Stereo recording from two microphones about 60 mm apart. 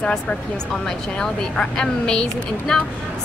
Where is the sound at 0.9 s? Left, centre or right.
Centre.